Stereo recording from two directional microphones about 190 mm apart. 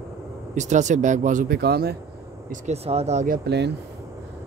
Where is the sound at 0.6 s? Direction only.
40° right (ahead or behind); by 1.9 s 55° right (ahead or behind).